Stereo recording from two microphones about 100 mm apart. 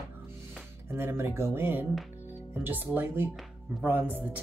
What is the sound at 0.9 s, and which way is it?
Speech, 25° right (ahead or behind).